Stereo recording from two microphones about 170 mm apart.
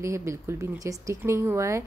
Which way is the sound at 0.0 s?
15° right (ahead or behind).